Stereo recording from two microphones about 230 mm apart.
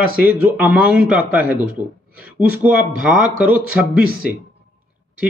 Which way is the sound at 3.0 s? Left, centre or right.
Centre.